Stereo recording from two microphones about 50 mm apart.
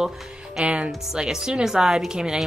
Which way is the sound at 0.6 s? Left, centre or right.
Right.